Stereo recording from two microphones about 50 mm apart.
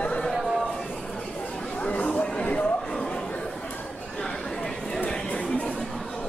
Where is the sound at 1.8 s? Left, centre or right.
Left.